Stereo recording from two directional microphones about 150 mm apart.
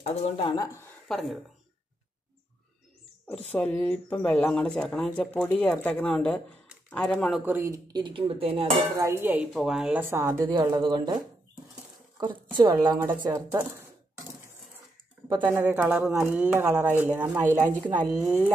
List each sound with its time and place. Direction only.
0.0 s speech: 50° left (ahead or behind)
0.5 s a woman's voice: 20° left (ahead or behind)
1.0 s speech: centre (ahead or behind)
3.3 s speech: 10° left (ahead or behind)
7.4 s a woman's voice: 20° right (ahead or behind)
8.0 s speech: 40° right (ahead or behind)
8.9 s speech: 20° right (ahead or behind); by 10.0 s 5° right (ahead or behind)
10.0 s speech: 15° right (ahead or behind)
10.4 s a woman's voice: 30° right (ahead or behind)
12.2 s a woman's voice: 30° right (ahead or behind)
15.4 s speech: 15° right (ahead or behind)